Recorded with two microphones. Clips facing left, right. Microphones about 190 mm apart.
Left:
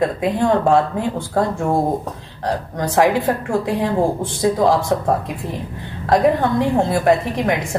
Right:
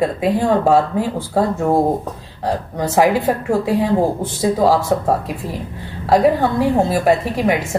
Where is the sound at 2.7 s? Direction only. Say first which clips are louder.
Right 1 dB; 5° right (ahead or behind).